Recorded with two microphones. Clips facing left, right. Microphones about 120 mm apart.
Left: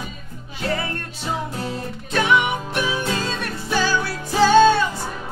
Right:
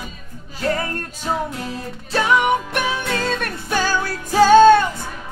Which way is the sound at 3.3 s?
55° right (ahead or behind).